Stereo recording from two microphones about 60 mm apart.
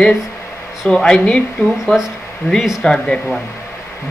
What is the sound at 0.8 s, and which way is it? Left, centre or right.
Speech, centre.